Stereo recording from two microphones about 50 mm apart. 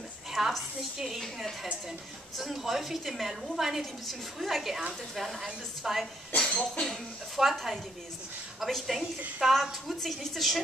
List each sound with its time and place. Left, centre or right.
0.3 s a woman's voice: centre
6.3 s a sound: centre
6.9 s a woman's voice: centre
8.5 s a woman's voice: centre